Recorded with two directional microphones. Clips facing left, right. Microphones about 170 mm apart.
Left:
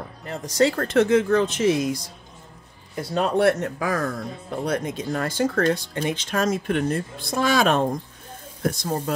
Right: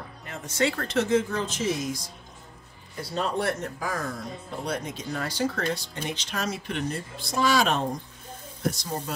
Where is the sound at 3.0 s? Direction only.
60° left (ahead or behind).